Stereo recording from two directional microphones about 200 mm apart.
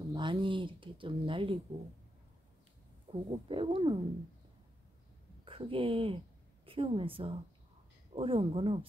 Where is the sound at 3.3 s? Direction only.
25° right (ahead or behind).